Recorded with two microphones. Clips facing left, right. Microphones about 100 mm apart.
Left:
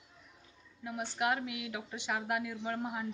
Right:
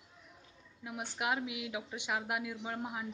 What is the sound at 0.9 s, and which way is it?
Speech, 10° right (ahead or behind).